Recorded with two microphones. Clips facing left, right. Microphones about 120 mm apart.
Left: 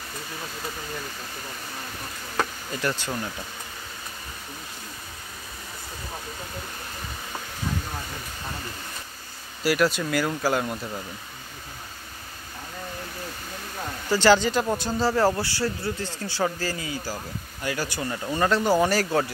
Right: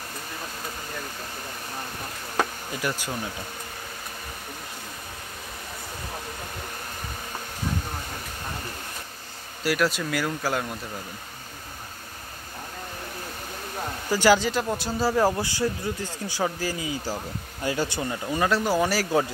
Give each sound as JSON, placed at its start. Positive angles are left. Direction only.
{"t": 2.3, "sound": "insect", "side_deg": -10}
{"t": 9.6, "sound": "speech", "side_deg": 0}
{"t": 14.0, "sound": "speech", "side_deg": -10}
{"t": 18.1, "sound": "speech", "side_deg": -10}